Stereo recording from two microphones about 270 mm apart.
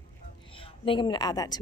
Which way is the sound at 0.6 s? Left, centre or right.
Centre.